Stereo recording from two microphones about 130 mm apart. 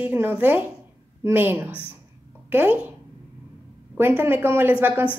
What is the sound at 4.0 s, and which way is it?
Speech, 15° right (ahead or behind).